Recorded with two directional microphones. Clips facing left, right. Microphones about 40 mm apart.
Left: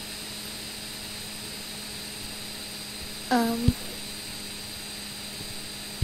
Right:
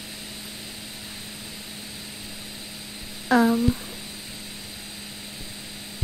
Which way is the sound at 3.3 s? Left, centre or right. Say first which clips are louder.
Right 5 dB; right.